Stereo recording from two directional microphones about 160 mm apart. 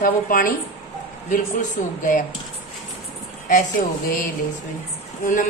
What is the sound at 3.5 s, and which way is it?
Speech, 60° left (ahead or behind).